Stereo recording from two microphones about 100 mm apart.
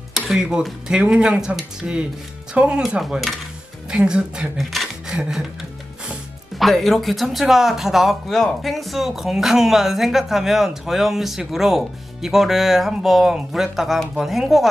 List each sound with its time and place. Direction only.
0.1 s speech: 5° right (ahead or behind)
6.6 s a man's voice: centre (ahead or behind)